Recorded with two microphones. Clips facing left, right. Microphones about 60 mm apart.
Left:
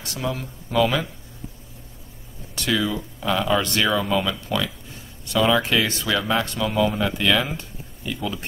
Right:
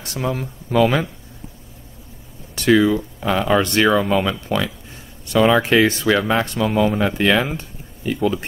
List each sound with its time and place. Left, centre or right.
0.1 s speech: right
2.5 s speech: right